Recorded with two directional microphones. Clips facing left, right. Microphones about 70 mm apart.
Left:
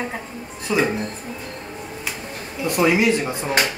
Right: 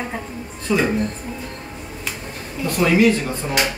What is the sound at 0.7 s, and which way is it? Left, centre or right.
Speech, centre.